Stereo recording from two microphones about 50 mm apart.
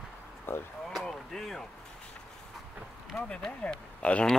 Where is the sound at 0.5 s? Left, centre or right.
Left.